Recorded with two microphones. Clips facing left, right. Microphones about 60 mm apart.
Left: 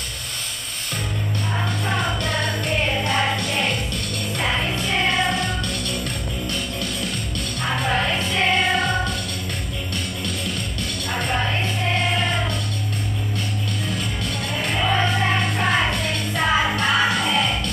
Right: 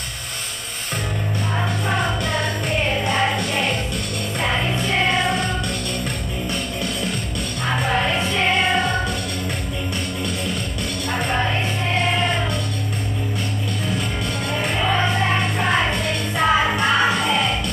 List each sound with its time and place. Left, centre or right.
3.0 s music: centre
4.4 s music: centre
7.8 s music: centre
11.1 s music: centre
14.6 s music: centre